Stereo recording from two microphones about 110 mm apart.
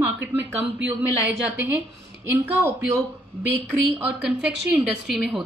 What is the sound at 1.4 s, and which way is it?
Speech, 20° right (ahead or behind).